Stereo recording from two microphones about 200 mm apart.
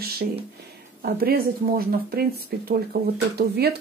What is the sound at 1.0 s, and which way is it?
Speech, 50° right (ahead or behind).